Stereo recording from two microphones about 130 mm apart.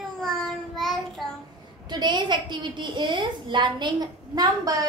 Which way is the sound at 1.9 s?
35° right (ahead or behind).